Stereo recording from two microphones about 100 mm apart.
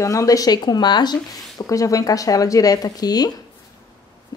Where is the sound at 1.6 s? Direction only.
35° left (ahead or behind).